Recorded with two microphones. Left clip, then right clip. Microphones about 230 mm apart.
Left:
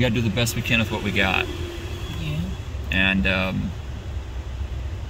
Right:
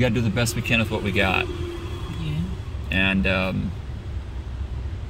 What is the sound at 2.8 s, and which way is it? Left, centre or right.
Speech, right.